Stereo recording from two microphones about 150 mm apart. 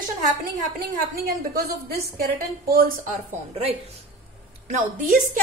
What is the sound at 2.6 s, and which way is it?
Speech, 75° right (ahead or behind).